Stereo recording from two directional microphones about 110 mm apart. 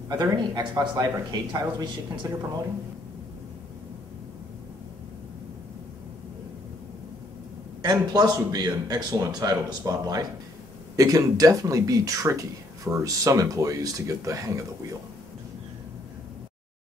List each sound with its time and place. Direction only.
0.1 s speech: 40° right (ahead or behind)
7.8 s speech: 40° right (ahead or behind)